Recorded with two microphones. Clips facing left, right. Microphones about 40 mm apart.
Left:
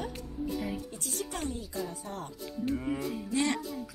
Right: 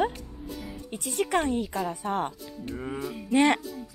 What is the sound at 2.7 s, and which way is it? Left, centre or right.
Music, right.